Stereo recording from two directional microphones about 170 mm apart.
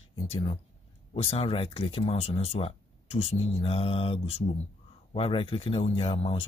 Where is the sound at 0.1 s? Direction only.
35° left (ahead or behind).